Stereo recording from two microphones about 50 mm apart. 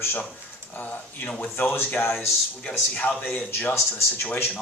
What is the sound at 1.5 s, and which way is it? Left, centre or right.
Speech, left.